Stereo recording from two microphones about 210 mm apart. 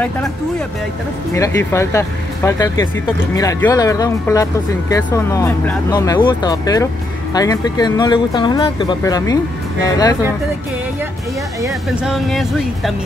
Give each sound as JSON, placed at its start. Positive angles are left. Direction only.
{"t": 1.3, "sound": "speech", "side_deg": 15}
{"t": 11.6, "sound": "speech", "side_deg": -5}